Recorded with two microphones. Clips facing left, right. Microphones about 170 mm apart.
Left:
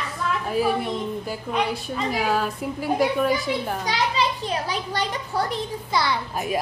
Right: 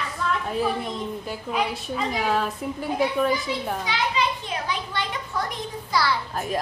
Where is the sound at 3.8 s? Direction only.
40° left (ahead or behind); by 6.4 s 20° left (ahead or behind).